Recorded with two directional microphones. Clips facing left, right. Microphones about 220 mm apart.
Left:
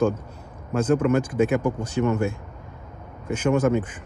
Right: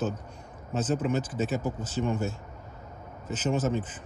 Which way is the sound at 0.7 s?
60° left (ahead or behind).